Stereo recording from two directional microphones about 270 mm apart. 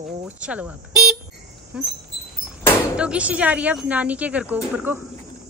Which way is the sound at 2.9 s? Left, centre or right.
Centre.